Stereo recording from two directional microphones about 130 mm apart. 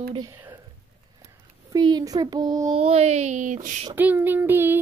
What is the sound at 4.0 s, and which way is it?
Child singing, 15° right (ahead or behind).